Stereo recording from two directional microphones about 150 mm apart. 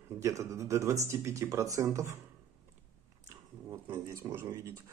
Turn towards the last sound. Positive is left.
turn(degrees=-20)  # may be behind; listen again after turning